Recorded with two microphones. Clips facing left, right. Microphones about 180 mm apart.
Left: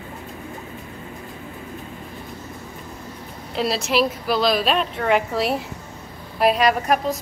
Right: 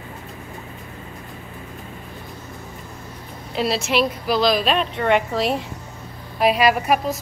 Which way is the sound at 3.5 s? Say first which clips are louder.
Even; centre (ahead or behind).